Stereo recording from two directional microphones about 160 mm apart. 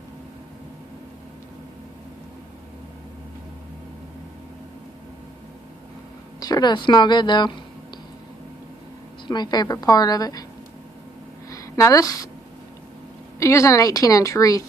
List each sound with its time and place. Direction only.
6.4 s a woman's voice: 25° left (ahead or behind)
9.3 s a woman's voice: 25° left (ahead or behind)
11.5 s speech: 20° left (ahead or behind)
13.4 s a woman's voice: 20° left (ahead or behind)